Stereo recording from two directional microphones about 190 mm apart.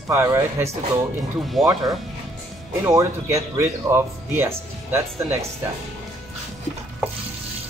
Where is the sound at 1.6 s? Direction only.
Centre (ahead or behind).